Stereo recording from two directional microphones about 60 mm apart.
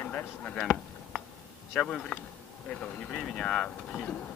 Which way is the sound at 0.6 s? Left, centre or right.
Centre.